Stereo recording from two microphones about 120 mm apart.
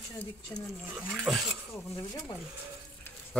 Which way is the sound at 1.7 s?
25° left (ahead or behind).